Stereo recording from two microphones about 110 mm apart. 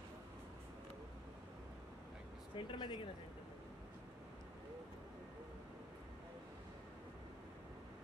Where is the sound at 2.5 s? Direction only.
45° left (ahead or behind).